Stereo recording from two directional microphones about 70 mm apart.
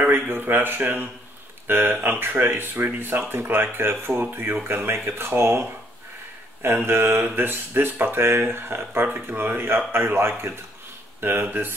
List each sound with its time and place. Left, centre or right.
0.0 s speech: right